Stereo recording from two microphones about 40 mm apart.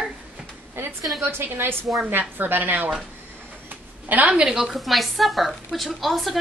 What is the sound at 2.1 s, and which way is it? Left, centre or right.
Speech, right.